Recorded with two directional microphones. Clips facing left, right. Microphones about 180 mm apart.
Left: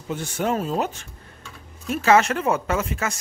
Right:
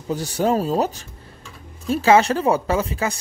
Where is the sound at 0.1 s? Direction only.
35° right (ahead or behind).